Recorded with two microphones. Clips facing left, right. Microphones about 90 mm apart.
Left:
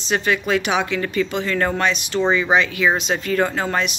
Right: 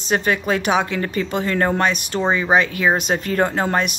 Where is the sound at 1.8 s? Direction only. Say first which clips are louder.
Even; 45° right (ahead or behind).